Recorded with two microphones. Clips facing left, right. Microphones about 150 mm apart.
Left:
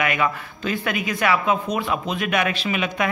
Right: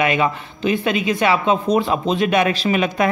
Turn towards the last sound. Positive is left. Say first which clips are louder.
# right 6 dB
turn(degrees=-35)  # may be behind; listen again after turning